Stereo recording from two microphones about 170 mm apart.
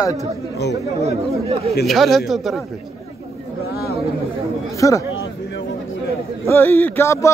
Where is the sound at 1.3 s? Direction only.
35° right (ahead or behind).